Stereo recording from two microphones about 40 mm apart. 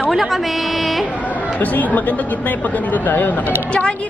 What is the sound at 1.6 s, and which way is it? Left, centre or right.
Speech, left.